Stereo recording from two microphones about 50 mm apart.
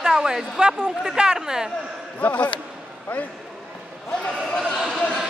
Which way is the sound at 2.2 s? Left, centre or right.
Left.